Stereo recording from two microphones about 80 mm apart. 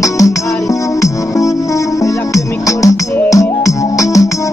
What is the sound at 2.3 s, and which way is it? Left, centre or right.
Music, left.